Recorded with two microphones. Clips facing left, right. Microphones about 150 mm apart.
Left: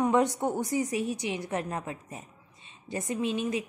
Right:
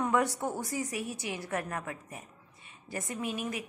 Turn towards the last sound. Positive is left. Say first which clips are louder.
# left 6 dB
turn(degrees=25)  # may be behind; listen again after turning